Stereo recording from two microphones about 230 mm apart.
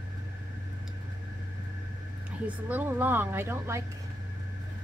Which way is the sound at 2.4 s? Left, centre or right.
Centre.